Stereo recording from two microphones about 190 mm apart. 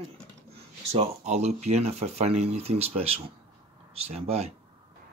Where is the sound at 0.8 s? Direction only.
35° right (ahead or behind).